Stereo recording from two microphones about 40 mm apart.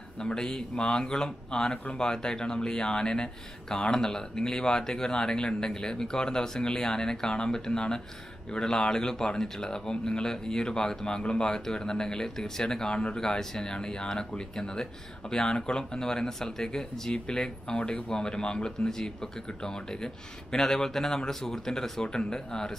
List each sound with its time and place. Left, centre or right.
0.2 s speech: centre